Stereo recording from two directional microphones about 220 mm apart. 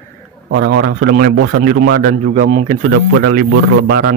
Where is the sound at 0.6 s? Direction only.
45° right (ahead or behind).